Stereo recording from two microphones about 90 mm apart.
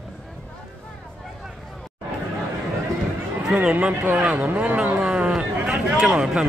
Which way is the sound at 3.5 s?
15° right (ahead or behind).